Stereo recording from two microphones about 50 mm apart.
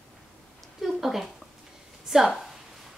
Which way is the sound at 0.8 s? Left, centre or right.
Centre.